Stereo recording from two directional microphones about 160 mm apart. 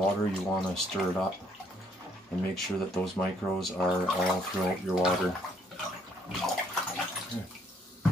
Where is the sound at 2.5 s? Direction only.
5° left (ahead or behind).